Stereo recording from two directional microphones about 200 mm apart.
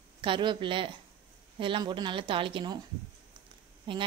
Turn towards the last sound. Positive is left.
turn(degrees=-25)  # may be behind; listen again after turning